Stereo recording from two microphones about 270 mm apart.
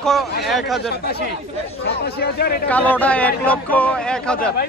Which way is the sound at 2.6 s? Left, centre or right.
Centre.